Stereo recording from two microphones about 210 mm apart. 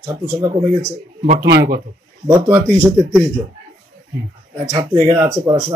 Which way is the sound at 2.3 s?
15° right (ahead or behind).